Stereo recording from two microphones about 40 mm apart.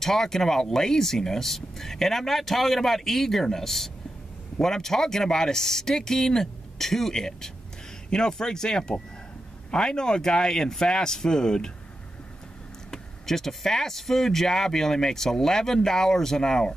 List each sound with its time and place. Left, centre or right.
0.0 s speech: centre
12.9 s speech: centre